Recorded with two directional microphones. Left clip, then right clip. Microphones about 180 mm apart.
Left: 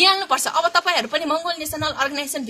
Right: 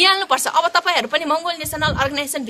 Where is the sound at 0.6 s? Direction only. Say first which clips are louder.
Right 1 dB; 35° right (ahead or behind).